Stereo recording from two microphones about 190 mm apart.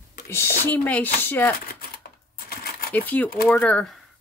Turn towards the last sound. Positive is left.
turn(degrees=5)  # may be behind; listen again after turning